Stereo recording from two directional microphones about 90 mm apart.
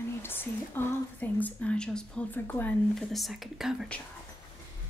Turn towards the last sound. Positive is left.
turn(degrees=-5)  # may be behind; listen again after turning